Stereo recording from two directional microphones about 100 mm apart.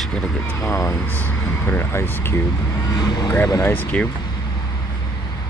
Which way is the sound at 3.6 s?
20° left (ahead or behind).